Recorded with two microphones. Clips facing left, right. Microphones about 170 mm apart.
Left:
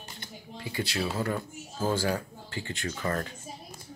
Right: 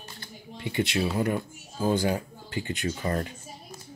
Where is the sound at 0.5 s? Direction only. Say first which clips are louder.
Right 5 dB; 25° right (ahead or behind).